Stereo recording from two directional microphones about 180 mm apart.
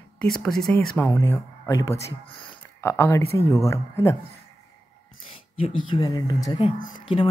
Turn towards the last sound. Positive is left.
turn(degrees=45)  # may be behind; listen again after turning